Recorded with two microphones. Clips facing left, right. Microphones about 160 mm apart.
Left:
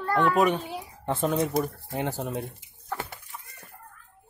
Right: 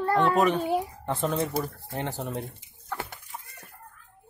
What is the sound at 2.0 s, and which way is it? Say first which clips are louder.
Speech: left 2 dB; 10° left (ahead or behind).